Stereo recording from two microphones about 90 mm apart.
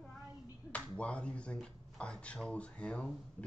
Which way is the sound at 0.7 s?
15° left (ahead or behind).